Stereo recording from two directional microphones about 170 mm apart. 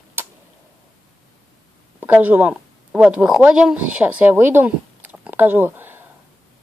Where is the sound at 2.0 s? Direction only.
10° right (ahead or behind).